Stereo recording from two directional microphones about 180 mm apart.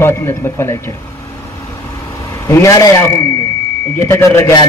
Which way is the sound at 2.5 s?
15° left (ahead or behind).